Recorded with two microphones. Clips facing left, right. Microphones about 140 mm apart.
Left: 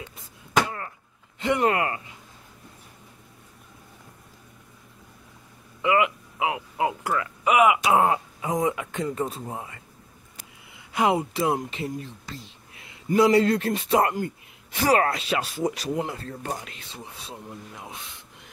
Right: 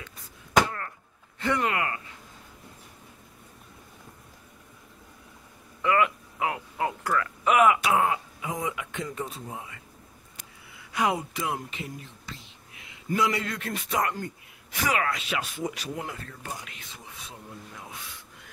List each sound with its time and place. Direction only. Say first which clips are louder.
0.7 s a sound: left 1 dB; 15° left (ahead or behind)
1.6 s speech: left 5 dB; 30° left (ahead or behind)
5.8 s speech: left 2 dB; 15° left (ahead or behind)
7.8 s speech: left 4 dB; 30° left (ahead or behind)
10.8 s speech: left 4 dB; 25° left (ahead or behind)